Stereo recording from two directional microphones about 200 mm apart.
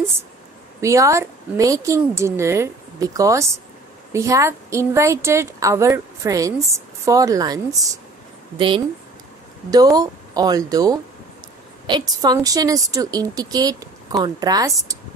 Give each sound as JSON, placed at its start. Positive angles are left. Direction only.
{"t": 0.7, "sound": "a woman's voice", "side_deg": -15}
{"t": 12.2, "sound": "speech", "side_deg": -20}